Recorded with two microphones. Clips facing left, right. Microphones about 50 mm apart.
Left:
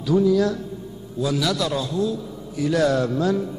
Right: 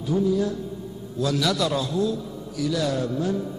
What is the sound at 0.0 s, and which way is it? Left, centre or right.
Speech, left.